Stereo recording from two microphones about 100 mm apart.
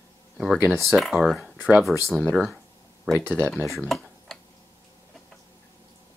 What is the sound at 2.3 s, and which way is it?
Speech, centre (ahead or behind).